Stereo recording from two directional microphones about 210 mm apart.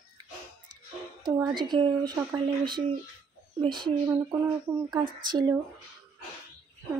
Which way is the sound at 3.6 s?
25° right (ahead or behind).